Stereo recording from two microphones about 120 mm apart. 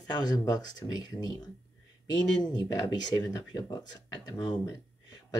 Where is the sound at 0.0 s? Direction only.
35° left (ahead or behind).